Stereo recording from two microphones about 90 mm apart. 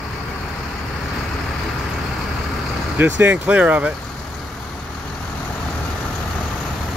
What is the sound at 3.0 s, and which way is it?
Speech, 20° right (ahead or behind).